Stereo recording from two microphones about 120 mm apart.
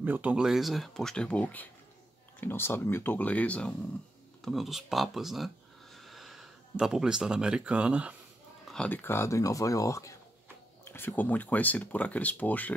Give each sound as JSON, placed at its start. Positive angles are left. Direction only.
{"t": 0.0, "sound": "speech", "side_deg": -15}
{"t": 4.5, "sound": "speech", "side_deg": 0}
{"t": 8.6, "sound": "speech", "side_deg": 10}
{"t": 10.9, "sound": "speech", "side_deg": 15}